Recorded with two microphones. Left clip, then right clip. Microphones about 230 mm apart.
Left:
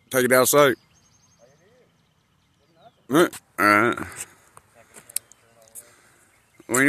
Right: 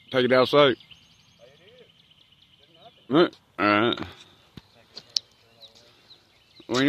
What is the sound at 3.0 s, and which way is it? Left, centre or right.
Speech, centre.